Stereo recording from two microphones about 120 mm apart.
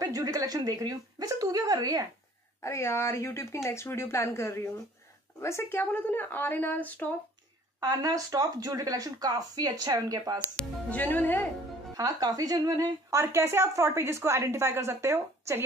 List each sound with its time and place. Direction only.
0.0 s speech: 30° right (ahead or behind)
2.6 s a woman's voice: 25° left (ahead or behind)
7.8 s speech: 30° right (ahead or behind)
10.6 s a woman's voice: 10° left (ahead or behind)
11.9 s a woman's voice: 30° right (ahead or behind)